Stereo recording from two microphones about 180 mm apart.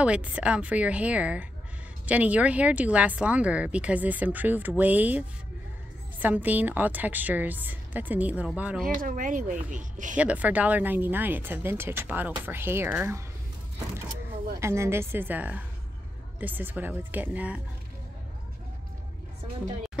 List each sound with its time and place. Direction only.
0.0 s speech: 5° right (ahead or behind)
8.8 s speech: 50° right (ahead or behind)
10.1 s speech: 5° right (ahead or behind)
14.6 s speech: 15° right (ahead or behind)